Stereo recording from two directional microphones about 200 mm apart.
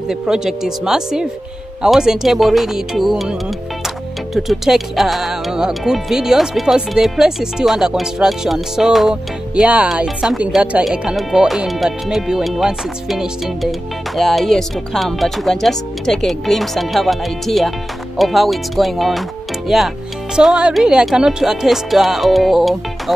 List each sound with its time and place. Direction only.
0.1 s speech: centre (ahead or behind)